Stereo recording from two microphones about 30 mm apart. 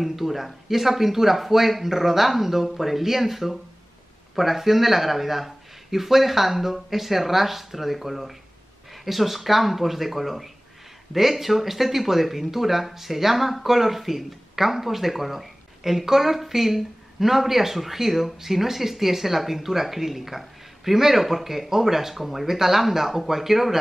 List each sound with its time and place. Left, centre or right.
0.0 s speech: centre